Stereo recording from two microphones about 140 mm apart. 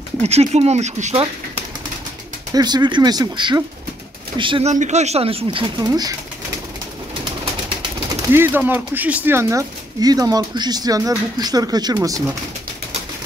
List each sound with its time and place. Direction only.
0.2 s speech: 50° right (ahead or behind)
2.5 s speech: 30° right (ahead or behind)
4.6 s speech: 55° right (ahead or behind)
5.8 s speech: 25° right (ahead or behind)
8.1 s speech: 15° right (ahead or behind)